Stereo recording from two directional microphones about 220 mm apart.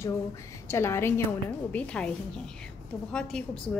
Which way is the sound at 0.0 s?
10° left (ahead or behind).